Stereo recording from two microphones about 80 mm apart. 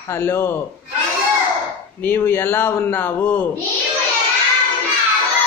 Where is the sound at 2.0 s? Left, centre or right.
Left.